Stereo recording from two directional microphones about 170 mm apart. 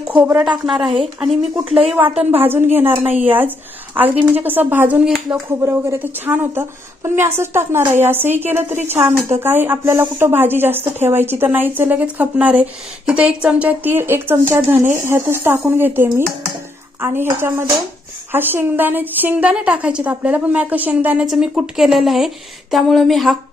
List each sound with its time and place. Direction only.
0.1 s a woman's voice: 10° right (ahead or behind)
2.0 s a woman's voice: 35° right (ahead or behind)
2.4 s speech: 15° right (ahead or behind)